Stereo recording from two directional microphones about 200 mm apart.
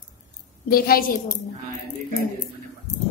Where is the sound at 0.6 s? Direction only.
50° left (ahead or behind).